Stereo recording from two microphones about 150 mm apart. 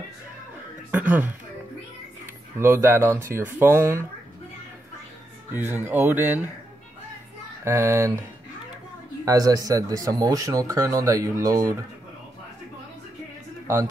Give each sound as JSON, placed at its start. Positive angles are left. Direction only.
{"t": 0.9, "sound": "speech", "side_deg": -10}
{"t": 2.6, "sound": "speech", "side_deg": -15}
{"t": 5.5, "sound": "speech", "side_deg": -15}
{"t": 7.6, "sound": "speech", "side_deg": -15}